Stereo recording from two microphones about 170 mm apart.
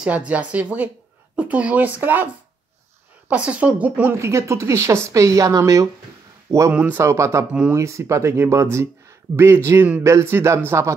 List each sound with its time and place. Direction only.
0.3 s a woman's voice: 10° right (ahead or behind)
3.3 s a woman's voice: 5° right (ahead or behind)